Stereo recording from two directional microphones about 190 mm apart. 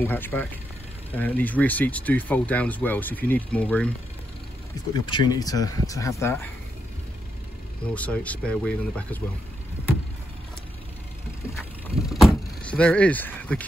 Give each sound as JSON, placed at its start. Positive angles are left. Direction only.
{"t": 0.0, "sound": "speech", "side_deg": 10}
{"t": 4.9, "sound": "speech", "side_deg": 25}
{"t": 7.9, "sound": "speech", "side_deg": 5}
{"t": 12.1, "sound": "vehicle", "side_deg": 0}